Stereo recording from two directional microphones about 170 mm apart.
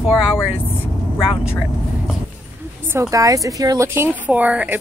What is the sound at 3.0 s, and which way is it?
Speech, 20° right (ahead or behind).